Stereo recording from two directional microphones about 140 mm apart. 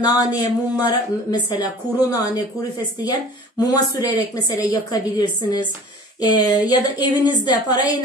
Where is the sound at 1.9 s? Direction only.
30° left (ahead or behind).